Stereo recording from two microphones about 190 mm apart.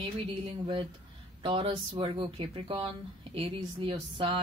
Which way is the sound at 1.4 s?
30° right (ahead or behind).